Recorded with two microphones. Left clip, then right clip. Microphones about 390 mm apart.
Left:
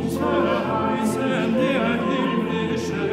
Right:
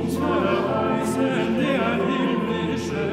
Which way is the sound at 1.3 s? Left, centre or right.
Centre.